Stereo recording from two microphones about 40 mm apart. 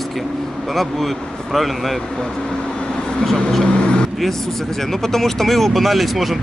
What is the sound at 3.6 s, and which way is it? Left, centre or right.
Vehicle, left.